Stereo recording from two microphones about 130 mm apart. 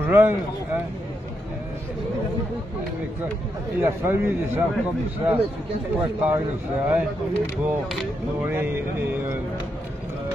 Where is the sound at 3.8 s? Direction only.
20° right (ahead or behind).